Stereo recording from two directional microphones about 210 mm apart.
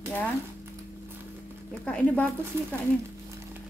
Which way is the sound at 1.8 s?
5° left (ahead or behind).